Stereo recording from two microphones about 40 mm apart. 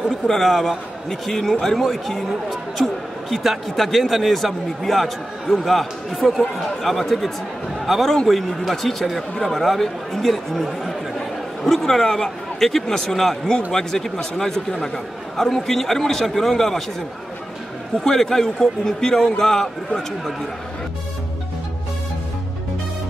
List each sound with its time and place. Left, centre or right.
0.0 s a man's voice: centre
18.0 s a man's voice: centre